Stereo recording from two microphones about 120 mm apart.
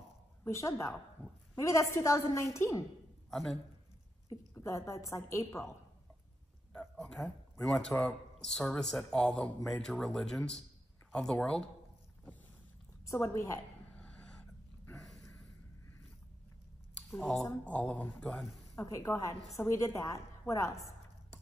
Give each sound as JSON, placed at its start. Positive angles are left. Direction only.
{"t": 0.5, "sound": "a woman's voice", "side_deg": 25}
{"t": 3.3, "sound": "a man's voice", "side_deg": 0}
{"t": 4.3, "sound": "a woman's voice", "side_deg": 25}
{"t": 6.7, "sound": "a man's voice", "side_deg": 5}
{"t": 13.0, "sound": "a woman's voice", "side_deg": 25}
{"t": 13.9, "sound": "a sound", "side_deg": 10}
{"t": 17.1, "sound": "a man's voice", "side_deg": 5}
{"t": 18.4, "sound": "speech", "side_deg": 0}
{"t": 18.8, "sound": "a woman's voice", "side_deg": 25}